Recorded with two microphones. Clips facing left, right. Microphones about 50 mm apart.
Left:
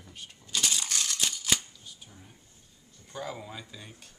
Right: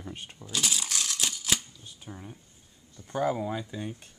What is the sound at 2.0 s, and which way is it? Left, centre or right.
Speech, right.